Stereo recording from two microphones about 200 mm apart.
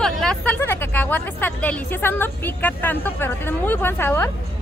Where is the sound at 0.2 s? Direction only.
5° left (ahead or behind).